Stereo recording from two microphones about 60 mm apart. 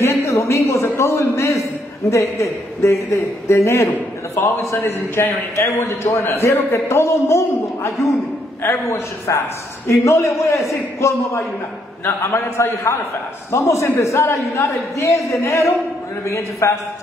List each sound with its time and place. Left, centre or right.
0.0 s a man's voice: left